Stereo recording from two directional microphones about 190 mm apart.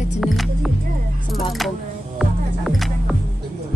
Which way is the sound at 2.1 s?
Centre (ahead or behind).